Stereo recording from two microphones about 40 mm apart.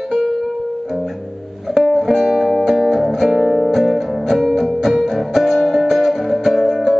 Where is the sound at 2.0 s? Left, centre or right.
Centre.